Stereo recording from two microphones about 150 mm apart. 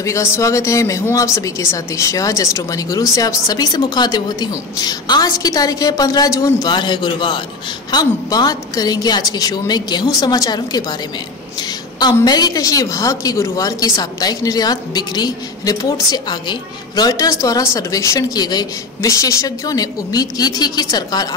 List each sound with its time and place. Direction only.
0.0 s a woman's voice: 20° left (ahead or behind)
12.0 s a woman's voice: 25° left (ahead or behind)